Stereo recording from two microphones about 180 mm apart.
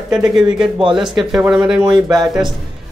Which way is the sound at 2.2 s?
25° right (ahead or behind).